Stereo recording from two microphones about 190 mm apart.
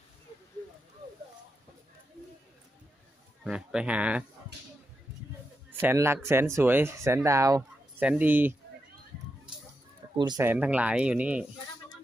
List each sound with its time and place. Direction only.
3.4 s speech: 5° right (ahead or behind)
5.7 s speech: 10° right (ahead or behind)
10.1 s speech: 20° right (ahead or behind)
10.4 s speech: 10° right (ahead or behind)